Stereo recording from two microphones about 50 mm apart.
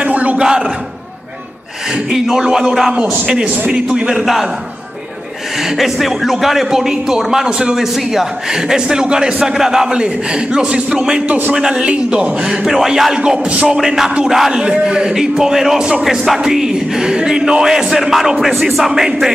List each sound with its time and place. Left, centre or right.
0.0 s a sound: right
0.4 s a man's voice: centre
2.0 s a man's voice: centre
5.6 s a man's voice: centre
12.6 s a man's voice: centre
13.2 s music: centre
13.7 s a man's voice: centre